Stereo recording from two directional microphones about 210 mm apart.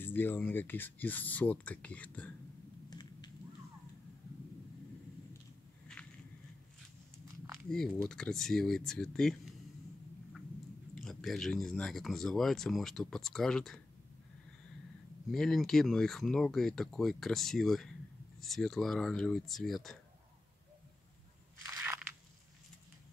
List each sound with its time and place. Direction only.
0.0 s speech: 10° left (ahead or behind)
2.9 s a sound: 20° left (ahead or behind)
7.7 s speech: centre (ahead or behind)
11.0 s speech: 5° left (ahead or behind)
15.3 s speech: centre (ahead or behind)
21.6 s crushing: 15° right (ahead or behind)